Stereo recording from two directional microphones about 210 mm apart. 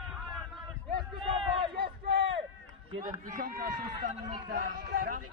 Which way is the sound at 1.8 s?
60° right (ahead or behind).